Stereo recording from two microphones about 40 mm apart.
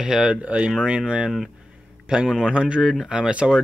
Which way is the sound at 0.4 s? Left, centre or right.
Right.